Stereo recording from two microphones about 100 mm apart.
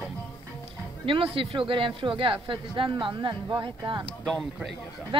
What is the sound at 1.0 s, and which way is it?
Speech, 65° right (ahead or behind).